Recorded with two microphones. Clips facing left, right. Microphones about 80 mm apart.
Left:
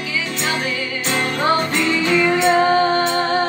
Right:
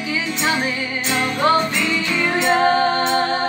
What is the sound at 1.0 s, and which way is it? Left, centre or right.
Music, left.